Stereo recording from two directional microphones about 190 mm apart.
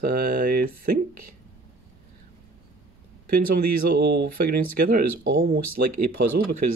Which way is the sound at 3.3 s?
50° right (ahead or behind).